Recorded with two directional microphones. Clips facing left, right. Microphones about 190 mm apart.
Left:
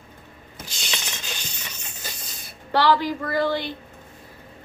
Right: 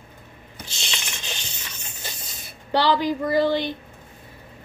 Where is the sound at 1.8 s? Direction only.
25° right (ahead or behind).